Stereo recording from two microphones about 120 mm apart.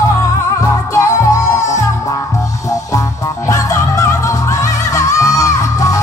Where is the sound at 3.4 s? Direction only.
25° left (ahead or behind).